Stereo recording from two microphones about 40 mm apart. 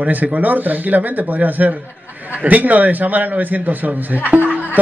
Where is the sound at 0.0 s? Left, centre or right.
Right.